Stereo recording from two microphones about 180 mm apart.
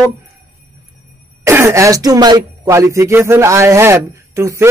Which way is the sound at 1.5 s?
15° right (ahead or behind).